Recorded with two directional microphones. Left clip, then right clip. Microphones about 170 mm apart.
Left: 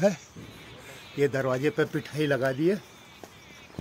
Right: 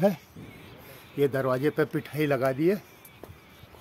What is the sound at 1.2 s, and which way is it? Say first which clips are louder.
Speech: even; centre (ahead or behind).